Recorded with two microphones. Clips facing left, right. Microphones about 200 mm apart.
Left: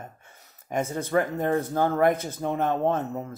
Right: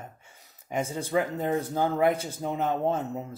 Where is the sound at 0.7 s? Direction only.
50° left (ahead or behind).